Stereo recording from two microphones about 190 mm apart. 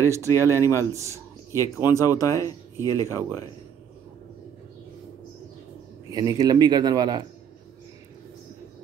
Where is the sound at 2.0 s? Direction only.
15° left (ahead or behind).